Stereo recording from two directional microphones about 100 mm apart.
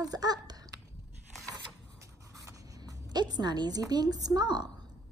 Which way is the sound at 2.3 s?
35° right (ahead or behind).